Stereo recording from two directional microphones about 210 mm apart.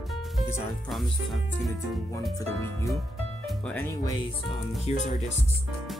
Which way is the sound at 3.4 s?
5° left (ahead or behind).